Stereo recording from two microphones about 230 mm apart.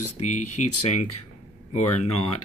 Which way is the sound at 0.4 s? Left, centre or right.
Left.